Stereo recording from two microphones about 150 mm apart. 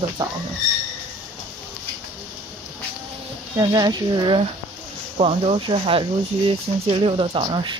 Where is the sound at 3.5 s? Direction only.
25° right (ahead or behind).